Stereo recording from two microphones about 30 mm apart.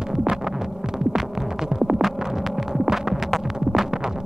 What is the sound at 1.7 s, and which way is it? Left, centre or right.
Music, centre.